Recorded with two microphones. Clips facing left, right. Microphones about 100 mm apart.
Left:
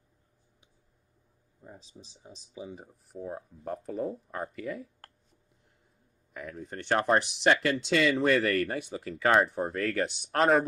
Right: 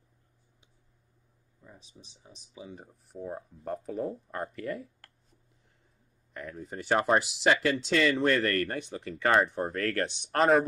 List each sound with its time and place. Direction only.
1.6 s speech: 30° left (ahead or behind)
2.7 s speech: 5° left (ahead or behind)
6.3 s speech: centre (ahead or behind)